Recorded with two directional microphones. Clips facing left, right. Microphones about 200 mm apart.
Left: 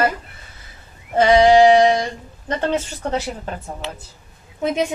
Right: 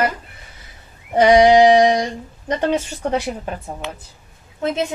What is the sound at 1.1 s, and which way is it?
Speech, 15° right (ahead or behind).